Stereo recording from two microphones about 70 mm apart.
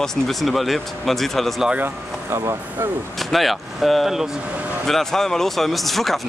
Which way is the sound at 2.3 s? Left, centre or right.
Right.